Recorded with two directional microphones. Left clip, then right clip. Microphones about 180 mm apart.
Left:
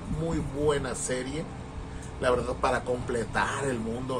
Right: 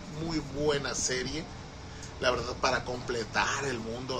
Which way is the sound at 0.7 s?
5° right (ahead or behind).